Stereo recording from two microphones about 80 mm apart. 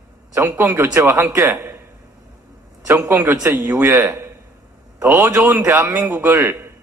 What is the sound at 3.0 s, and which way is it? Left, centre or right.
A man's voice, right.